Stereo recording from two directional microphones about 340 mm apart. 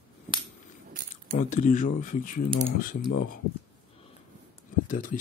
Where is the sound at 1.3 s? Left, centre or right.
Left.